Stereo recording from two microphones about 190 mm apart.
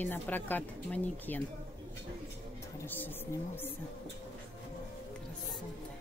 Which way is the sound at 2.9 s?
10° left (ahead or behind).